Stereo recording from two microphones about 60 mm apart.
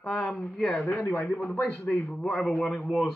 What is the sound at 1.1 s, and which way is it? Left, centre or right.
Speech, left.